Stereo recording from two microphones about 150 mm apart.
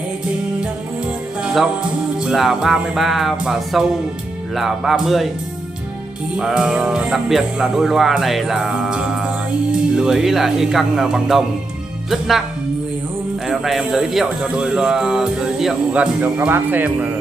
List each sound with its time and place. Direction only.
1.4 s speech: 5° right (ahead or behind)
6.3 s speech: 5° right (ahead or behind)
13.5 s speech: 5° right (ahead or behind)